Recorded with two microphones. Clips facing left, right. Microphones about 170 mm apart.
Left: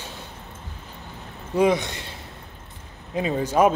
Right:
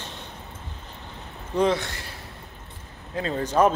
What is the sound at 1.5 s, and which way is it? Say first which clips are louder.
A man's voice: left 3 dB; 10° left (ahead or behind).